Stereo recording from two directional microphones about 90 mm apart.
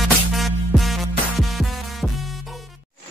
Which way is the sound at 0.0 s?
Centre (ahead or behind).